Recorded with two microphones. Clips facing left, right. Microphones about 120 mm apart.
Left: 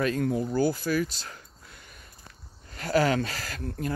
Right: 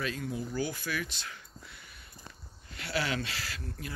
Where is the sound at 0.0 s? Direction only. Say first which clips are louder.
Left 9 dB; 50° left (ahead or behind).